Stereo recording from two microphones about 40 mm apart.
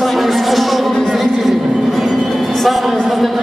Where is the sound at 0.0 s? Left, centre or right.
Centre.